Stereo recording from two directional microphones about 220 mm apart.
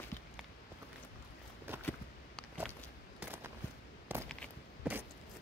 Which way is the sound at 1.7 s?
10° right (ahead or behind).